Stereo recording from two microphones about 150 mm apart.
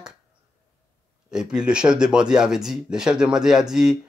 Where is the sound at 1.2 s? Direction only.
5° right (ahead or behind).